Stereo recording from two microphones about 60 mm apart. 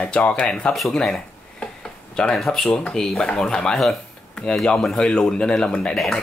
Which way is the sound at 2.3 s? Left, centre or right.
Centre.